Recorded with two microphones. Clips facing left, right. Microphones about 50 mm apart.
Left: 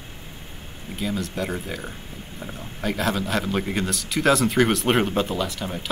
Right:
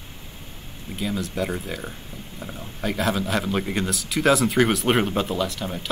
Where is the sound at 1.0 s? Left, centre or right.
Centre.